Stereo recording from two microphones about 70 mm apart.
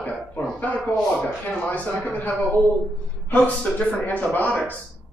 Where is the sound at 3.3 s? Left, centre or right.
Left.